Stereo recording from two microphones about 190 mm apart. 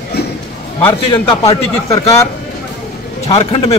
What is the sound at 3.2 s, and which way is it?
Speech, 30° left (ahead or behind).